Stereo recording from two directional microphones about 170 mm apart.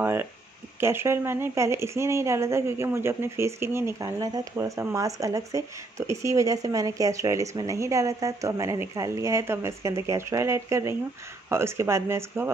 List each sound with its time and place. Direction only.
0.0 s speech: 15° right (ahead or behind)